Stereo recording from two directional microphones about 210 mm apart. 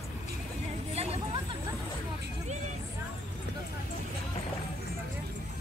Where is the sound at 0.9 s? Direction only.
30° right (ahead or behind).